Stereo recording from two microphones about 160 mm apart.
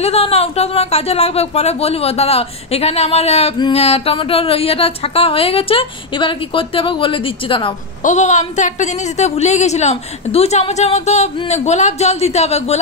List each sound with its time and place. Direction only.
0.0 s a woman's voice: 40° left (ahead or behind)
8.0 s a woman's voice: 50° left (ahead or behind)